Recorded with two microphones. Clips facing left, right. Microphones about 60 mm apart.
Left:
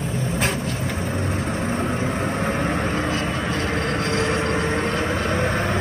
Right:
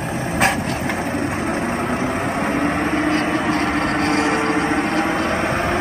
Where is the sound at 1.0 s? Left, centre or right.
Centre.